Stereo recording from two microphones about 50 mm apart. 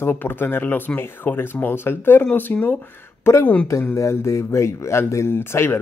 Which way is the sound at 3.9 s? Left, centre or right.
Left.